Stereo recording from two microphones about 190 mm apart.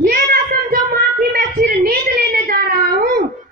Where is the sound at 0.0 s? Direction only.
50° right (ahead or behind).